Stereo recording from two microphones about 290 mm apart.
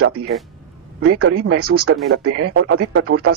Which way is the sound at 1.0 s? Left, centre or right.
Right.